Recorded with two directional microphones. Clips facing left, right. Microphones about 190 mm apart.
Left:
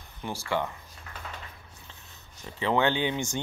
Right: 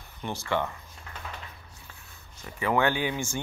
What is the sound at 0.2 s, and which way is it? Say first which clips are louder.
Speech: right 1 dB; 15° left (ahead or behind).